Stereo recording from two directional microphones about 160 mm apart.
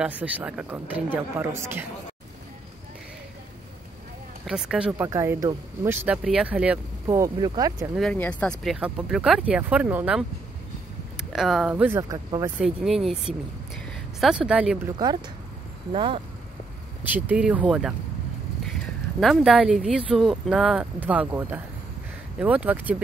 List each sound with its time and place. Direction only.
0.0 s speech: 5° right (ahead or behind)
4.5 s speech: 5° right (ahead or behind)
7.3 s speech: 25° right (ahead or behind)
7.9 s speech: 5° left (ahead or behind)
11.3 s speech: centre (ahead or behind)
12.0 s speech: 20° right (ahead or behind)
12.5 s speech: 5° right (ahead or behind)
15.9 s speech: 35° right (ahead or behind)
17.1 s speech: 10° right (ahead or behind)